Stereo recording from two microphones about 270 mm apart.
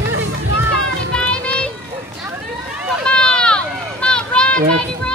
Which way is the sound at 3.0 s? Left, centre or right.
Centre.